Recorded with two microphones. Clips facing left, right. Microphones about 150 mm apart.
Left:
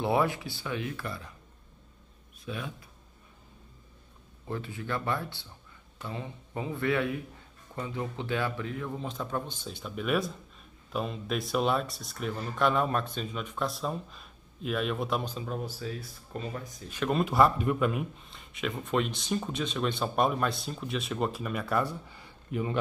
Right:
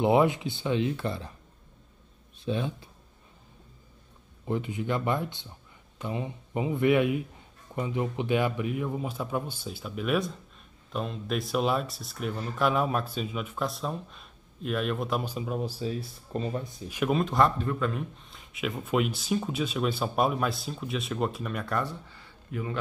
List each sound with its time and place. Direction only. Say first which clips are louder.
0.0 s speech: right 5 dB; 20° right (ahead or behind)
2.4 s speech: right 7 dB; 30° right (ahead or behind)
4.5 s a man's voice: right 5 dB; 20° right (ahead or behind)
15.8 s speech: right 5 dB; 25° right (ahead or behind)
16.8 s a man's voice: right 2 dB; 10° right (ahead or behind)
17.2 s speech: left 3 dB; 5° left (ahead or behind)
18.3 s speech: right 2 dB; centre (ahead or behind); by 22.8 s 20° left (ahead or behind)